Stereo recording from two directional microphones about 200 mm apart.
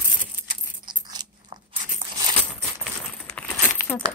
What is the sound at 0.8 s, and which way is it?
Crunch, 20° right (ahead or behind).